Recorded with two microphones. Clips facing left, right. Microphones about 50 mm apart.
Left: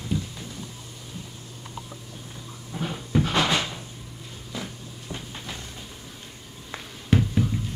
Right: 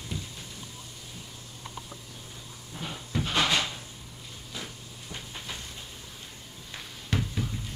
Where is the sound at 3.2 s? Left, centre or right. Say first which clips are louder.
Left 3 dB; left.